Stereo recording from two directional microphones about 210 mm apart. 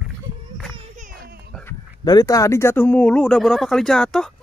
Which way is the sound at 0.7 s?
35° right (ahead or behind).